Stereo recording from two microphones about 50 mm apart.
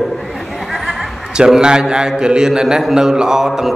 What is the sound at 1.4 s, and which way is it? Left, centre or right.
A man's voice, centre.